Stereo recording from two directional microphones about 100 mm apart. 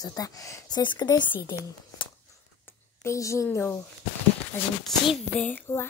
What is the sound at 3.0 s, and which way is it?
Speech, 30° left (ahead or behind).